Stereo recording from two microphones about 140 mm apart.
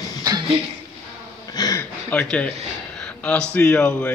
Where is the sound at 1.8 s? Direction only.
15° left (ahead or behind).